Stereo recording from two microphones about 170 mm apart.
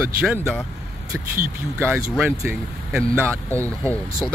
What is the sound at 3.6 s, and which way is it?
Speech, 10° left (ahead or behind).